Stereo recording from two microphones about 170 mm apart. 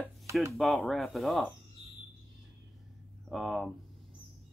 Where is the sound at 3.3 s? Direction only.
Centre (ahead or behind).